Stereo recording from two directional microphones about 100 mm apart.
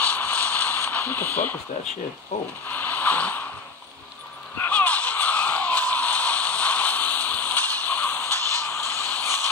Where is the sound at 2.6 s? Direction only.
15° left (ahead or behind).